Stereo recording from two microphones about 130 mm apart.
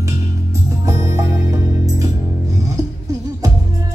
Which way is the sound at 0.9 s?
25° right (ahead or behind).